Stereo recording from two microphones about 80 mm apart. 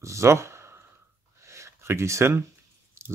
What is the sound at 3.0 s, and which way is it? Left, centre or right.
Biting, right.